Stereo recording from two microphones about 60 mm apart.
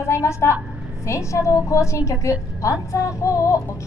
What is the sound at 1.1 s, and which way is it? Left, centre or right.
A woman's voice, left.